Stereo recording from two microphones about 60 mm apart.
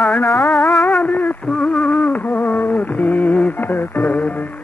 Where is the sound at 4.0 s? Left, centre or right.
Left.